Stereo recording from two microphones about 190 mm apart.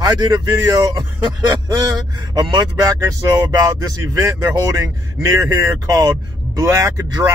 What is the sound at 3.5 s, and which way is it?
Speech, 15° right (ahead or behind).